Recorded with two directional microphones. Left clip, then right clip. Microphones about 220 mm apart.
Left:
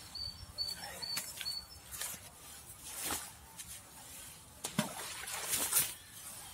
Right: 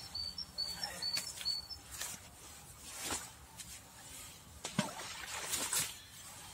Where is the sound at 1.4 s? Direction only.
10° left (ahead or behind).